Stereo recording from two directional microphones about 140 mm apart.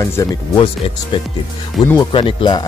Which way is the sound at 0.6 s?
40° left (ahead or behind).